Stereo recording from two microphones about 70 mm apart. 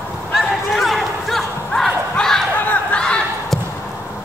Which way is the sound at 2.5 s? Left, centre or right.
Left.